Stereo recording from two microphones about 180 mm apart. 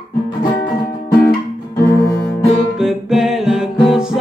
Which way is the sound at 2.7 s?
5° right (ahead or behind).